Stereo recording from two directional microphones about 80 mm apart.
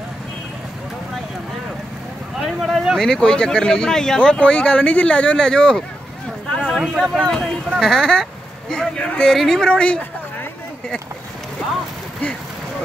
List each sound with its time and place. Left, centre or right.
2.3 s speech: centre
3.0 s speech: centre